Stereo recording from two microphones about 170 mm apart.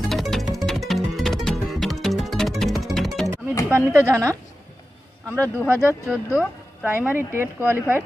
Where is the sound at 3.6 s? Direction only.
15° right (ahead or behind).